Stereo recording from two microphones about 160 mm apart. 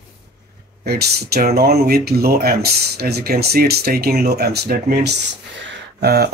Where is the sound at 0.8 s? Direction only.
80° right.